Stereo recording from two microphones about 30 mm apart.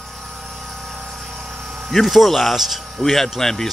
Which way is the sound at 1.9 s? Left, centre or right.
Centre.